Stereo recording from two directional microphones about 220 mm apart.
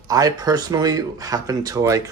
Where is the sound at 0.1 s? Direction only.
15° right (ahead or behind).